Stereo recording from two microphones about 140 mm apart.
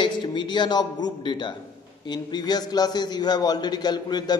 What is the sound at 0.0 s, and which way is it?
A man's voice, 35° left (ahead or behind).